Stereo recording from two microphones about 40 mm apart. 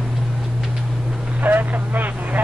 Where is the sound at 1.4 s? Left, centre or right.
Right.